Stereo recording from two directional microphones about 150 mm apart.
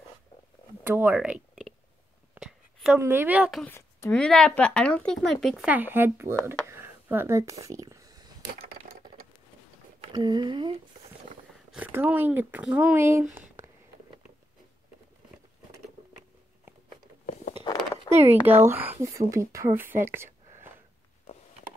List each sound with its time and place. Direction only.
0.8 s speech: 10° right (ahead or behind)
2.3 s a sound: 5° right (ahead or behind)
3.0 s speech: 15° right (ahead or behind)
3.6 s a woman's voice: 15° left (ahead or behind)
5.7 s speech: 15° right (ahead or behind)
6.7 s a sound: 15° right (ahead or behind)
9.9 s speech: 30° right (ahead or behind)
11.7 s speech: 10° right (ahead or behind)
18.2 s speech: 15° right (ahead or behind)